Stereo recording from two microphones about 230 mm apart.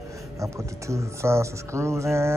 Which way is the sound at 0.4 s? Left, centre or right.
Centre.